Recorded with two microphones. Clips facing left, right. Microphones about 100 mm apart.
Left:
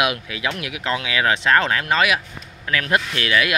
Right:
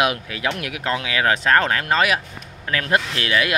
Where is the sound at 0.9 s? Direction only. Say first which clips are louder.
Even; 35° right (ahead or behind).